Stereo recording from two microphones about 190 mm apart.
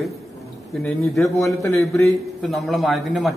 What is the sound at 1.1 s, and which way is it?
Speech, centre (ahead or behind).